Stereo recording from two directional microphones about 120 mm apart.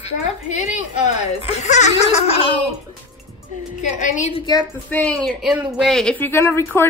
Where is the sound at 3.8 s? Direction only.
90° left.